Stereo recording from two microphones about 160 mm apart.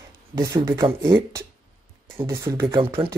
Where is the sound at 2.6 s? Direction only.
35° right (ahead or behind).